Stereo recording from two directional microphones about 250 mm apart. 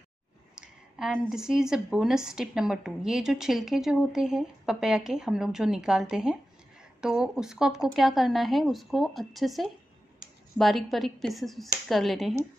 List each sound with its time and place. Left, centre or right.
0.6 s speech: centre